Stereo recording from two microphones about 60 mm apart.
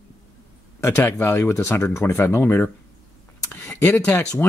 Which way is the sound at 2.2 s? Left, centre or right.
Left.